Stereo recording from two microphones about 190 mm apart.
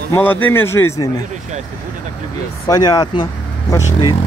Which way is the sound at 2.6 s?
20° left (ahead or behind).